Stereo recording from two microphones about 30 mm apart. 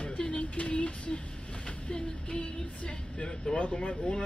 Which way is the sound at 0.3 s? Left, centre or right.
Left.